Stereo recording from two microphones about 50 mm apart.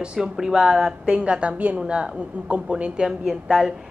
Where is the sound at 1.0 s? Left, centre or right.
Right.